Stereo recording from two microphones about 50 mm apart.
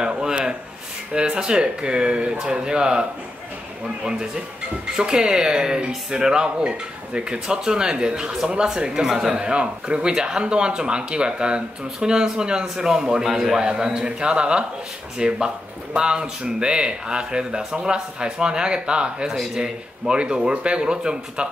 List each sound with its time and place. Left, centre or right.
0.0 s a sound: centre
1.1 s speech: centre
13.6 s a man's voice: centre